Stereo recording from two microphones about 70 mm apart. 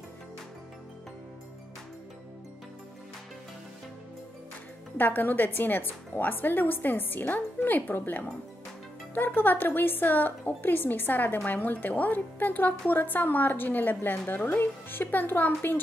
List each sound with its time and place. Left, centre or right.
4.9 s a woman's voice: left